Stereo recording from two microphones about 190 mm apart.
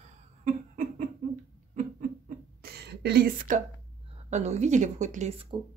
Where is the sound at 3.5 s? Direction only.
45° right (ahead or behind).